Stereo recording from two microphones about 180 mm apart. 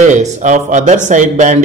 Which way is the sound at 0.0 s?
40° right (ahead or behind).